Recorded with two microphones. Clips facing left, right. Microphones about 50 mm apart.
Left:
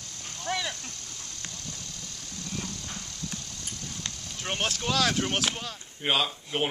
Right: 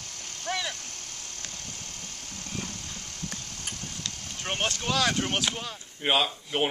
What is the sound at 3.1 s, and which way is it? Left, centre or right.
Clip-clop, right.